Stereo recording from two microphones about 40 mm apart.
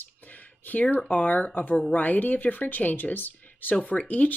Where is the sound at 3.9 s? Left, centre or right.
Left.